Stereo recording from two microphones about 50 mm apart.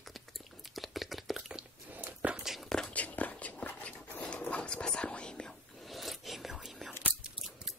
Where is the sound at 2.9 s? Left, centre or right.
Left.